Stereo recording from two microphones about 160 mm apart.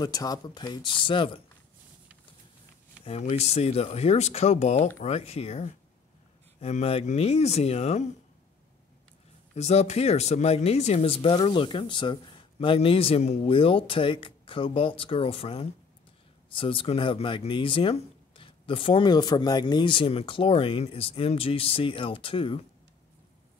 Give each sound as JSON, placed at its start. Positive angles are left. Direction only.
{"t": 0.0, "sound": "speech", "side_deg": 25}
{"t": 3.1, "sound": "speech", "side_deg": 40}
{"t": 5.0, "sound": "speech", "side_deg": 40}
{"t": 9.6, "sound": "speech", "side_deg": 40}